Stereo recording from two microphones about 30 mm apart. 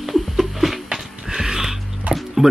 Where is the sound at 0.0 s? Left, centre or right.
Centre.